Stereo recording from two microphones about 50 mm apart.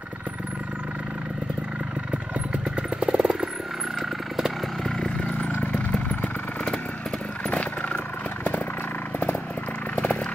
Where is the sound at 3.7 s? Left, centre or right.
Centre.